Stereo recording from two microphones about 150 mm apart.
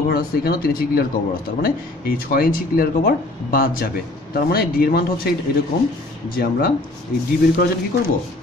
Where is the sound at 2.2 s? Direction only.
75° left (ahead or behind).